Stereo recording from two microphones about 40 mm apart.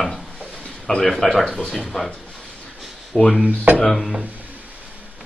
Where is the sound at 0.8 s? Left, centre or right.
Centre.